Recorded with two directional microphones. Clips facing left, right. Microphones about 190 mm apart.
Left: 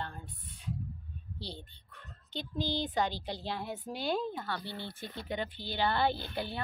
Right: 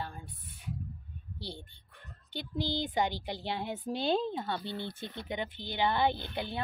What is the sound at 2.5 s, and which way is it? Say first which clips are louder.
Speech: right 1 dB; 15° right (ahead or behind).